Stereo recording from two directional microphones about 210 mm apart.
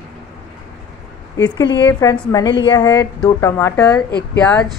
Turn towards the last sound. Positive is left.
turn(degrees=5)  # may be behind; listen again after turning